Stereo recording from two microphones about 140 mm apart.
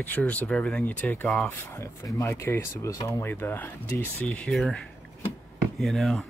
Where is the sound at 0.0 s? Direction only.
10° left (ahead or behind).